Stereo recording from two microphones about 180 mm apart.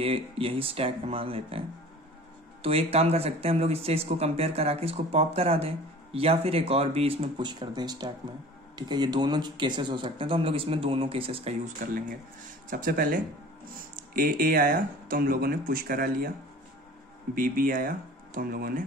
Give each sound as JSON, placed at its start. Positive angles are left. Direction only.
{"t": 0.0, "sound": "speech", "side_deg": -30}
{"t": 2.6, "sound": "speech", "side_deg": -35}
{"t": 11.8, "sound": "speech", "side_deg": -45}
{"t": 17.4, "sound": "speech", "side_deg": -50}